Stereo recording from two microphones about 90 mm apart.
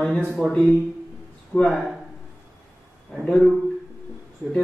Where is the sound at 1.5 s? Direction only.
5° left (ahead or behind).